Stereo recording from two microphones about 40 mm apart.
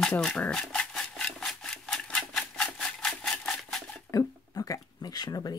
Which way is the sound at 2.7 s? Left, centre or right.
Centre.